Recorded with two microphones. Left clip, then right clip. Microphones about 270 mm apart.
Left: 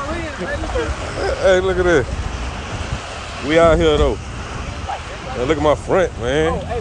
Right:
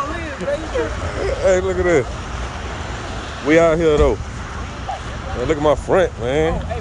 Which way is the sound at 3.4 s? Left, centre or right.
Centre.